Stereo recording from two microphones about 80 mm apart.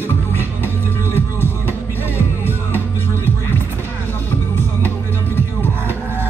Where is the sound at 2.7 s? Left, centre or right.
Left.